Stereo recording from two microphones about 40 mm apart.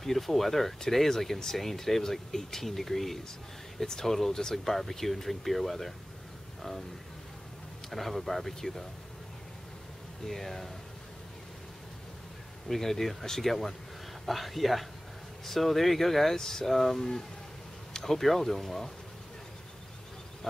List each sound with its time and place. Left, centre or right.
0.0 s speech: centre
7.9 s speech: centre
10.2 s speech: centre
12.6 s speech: centre